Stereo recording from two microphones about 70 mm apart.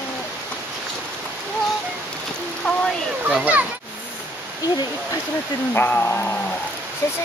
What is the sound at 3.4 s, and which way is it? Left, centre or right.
Speech, right.